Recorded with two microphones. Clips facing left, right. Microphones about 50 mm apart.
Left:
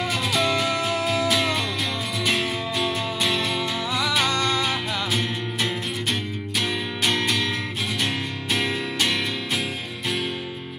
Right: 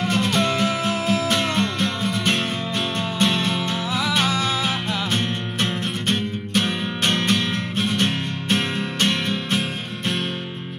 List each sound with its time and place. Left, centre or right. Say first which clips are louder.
0.0 s music: right 3 dB; centre